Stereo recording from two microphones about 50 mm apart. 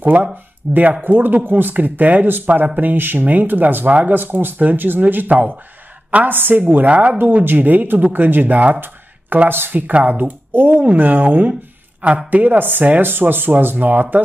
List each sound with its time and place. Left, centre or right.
0.0 s speech: right
0.7 s speech: centre
1.0 s speech: right
6.0 s a sound: right
6.3 s a woman's voice: right
6.9 s speech: right
7.3 s speech: right